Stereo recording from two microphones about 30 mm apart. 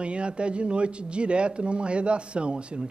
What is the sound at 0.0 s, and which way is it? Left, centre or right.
Speech, right.